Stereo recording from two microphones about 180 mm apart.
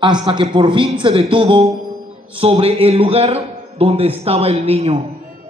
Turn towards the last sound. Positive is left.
turn(degrees=-35)  # may be behind; listen again after turning